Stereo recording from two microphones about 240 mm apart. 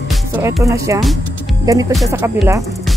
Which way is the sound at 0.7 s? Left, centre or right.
Centre.